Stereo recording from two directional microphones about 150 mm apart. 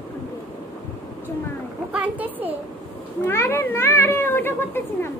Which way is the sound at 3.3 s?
15° left (ahead or behind).